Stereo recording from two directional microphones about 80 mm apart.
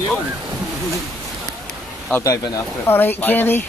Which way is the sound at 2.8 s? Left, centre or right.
Left.